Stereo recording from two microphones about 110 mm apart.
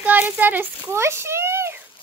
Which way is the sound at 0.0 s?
15° right (ahead or behind).